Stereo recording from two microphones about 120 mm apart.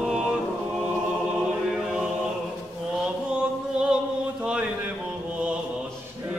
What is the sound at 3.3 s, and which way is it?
Music, 10° right (ahead or behind).